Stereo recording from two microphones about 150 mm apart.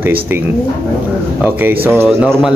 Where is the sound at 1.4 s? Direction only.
10° right (ahead or behind).